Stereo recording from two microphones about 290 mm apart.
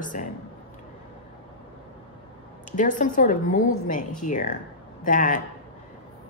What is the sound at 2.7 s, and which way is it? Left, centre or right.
A woman's voice, left.